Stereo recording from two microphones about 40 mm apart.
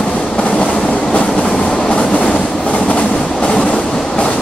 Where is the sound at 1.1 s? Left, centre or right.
Left.